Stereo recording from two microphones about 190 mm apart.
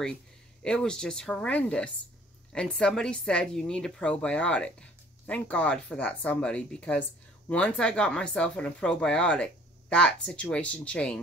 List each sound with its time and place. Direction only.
0.6 s speech: 5° left (ahead or behind)